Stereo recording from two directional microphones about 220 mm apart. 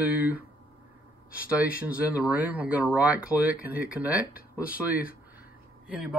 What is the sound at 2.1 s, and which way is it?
Speech, 5° right (ahead or behind).